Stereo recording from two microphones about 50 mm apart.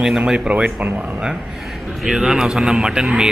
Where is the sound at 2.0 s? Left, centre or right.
Centre.